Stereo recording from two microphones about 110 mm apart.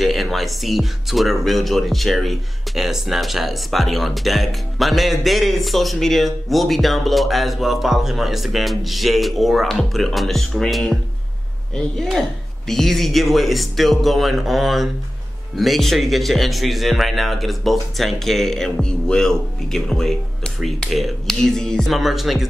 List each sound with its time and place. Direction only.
0.0 s speech: centre (ahead or behind)